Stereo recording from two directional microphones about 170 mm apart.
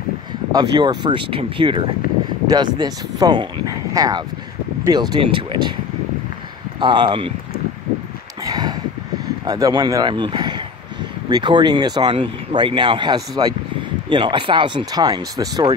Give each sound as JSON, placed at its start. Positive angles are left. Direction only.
{"t": 0.5, "sound": "speech", "side_deg": -25}
{"t": 6.8, "sound": "speech", "side_deg": -25}
{"t": 8.5, "sound": "a sound", "side_deg": -25}
{"t": 9.4, "sound": "speech", "side_deg": -20}